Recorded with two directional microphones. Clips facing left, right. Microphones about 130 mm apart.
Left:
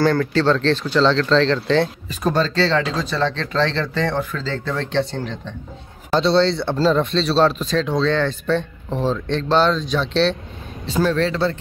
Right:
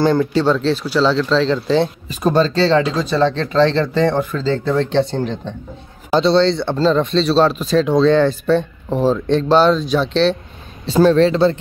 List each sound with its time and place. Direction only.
0.0 s speech: 20° right (ahead or behind)
6.1 s speech: centre (ahead or behind)
10.9 s speech: 25° right (ahead or behind)